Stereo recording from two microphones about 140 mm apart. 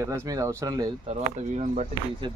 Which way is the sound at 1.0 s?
50° right (ahead or behind).